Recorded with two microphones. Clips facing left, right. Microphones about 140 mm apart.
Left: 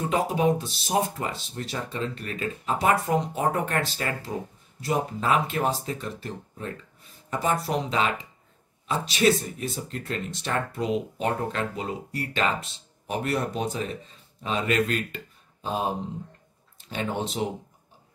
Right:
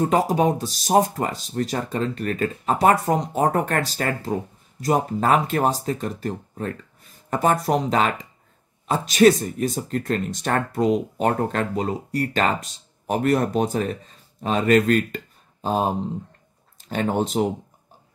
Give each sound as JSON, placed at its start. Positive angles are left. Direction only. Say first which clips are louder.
{"t": 0.1, "sound": "speech", "louder": "right 4 dB", "side_deg": -40}
{"t": 16.9, "sound": "speech", "louder": "right 7 dB", "side_deg": -45}